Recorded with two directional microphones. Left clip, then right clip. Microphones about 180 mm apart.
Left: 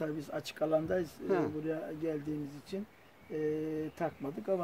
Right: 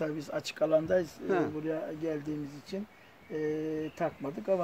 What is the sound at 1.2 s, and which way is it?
Speech, 15° left (ahead or behind).